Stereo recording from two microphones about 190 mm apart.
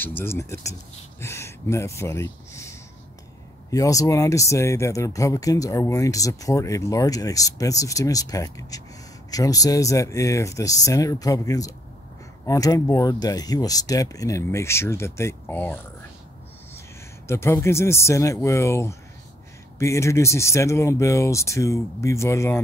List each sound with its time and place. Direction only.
0.0 s speech: 10° left (ahead or behind)
17.3 s speech: 15° left (ahead or behind)